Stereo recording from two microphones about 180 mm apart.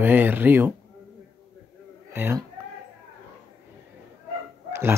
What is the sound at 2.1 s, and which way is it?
Speech, 15° right (ahead or behind).